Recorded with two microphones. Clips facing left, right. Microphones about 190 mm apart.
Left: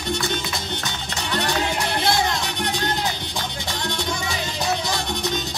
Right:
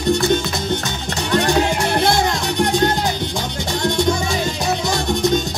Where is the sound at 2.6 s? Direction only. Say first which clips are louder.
Right 9 dB; 45° right (ahead or behind).